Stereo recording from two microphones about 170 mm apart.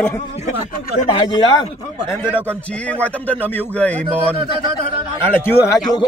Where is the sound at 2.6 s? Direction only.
5° left (ahead or behind).